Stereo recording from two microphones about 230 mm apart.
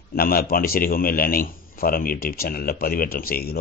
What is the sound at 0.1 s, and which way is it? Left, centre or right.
A man's voice, left.